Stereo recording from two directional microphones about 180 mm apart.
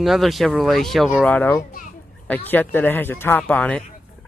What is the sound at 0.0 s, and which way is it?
Speech, centre (ahead or behind).